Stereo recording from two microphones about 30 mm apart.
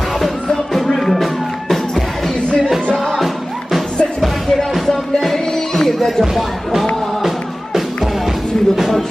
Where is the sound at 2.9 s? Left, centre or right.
Centre.